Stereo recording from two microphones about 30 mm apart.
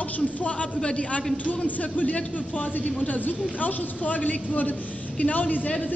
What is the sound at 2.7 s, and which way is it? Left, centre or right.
A man's voice, left.